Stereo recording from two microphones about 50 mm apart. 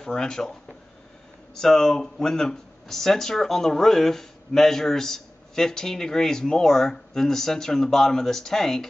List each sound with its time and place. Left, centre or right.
0.0 s speech: centre